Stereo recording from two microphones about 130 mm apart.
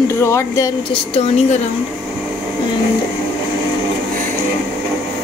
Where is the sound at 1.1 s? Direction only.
55° left (ahead or behind).